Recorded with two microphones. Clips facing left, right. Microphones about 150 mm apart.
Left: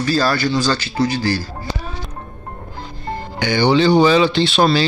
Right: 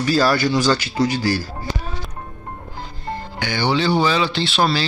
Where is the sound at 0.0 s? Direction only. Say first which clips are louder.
Even; 15° right (ahead or behind).